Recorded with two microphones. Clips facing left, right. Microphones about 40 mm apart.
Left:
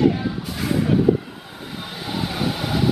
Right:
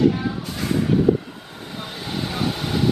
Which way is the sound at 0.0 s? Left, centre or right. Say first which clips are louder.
Even; centre.